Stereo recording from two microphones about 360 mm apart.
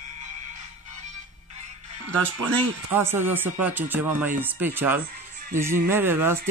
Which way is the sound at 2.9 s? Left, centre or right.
Centre.